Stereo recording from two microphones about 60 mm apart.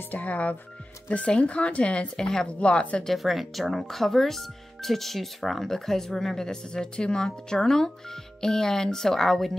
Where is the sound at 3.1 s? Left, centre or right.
Centre.